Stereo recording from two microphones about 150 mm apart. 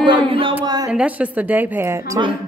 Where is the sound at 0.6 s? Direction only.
25° right (ahead or behind).